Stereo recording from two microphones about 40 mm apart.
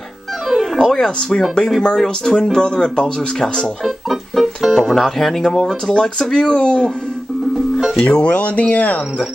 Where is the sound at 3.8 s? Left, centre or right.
Centre.